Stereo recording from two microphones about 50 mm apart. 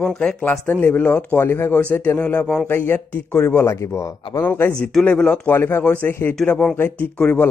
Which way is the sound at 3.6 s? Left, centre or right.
Left.